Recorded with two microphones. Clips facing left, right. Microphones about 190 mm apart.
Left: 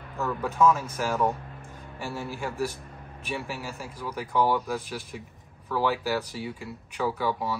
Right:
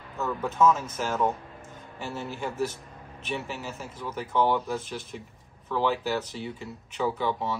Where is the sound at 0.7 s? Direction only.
10° left (ahead or behind).